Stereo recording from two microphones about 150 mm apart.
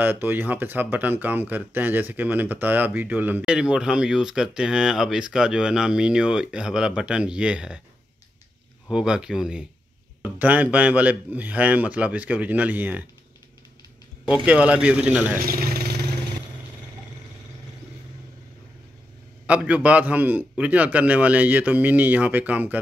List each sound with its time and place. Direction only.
0.0 s speech: 15° right (ahead or behind)
8.8 s speech: 5° right (ahead or behind)
14.2 s speech: 5° right (ahead or behind)
15.4 s vehicle: 75° right (ahead or behind)
19.4 s speech: 10° right (ahead or behind)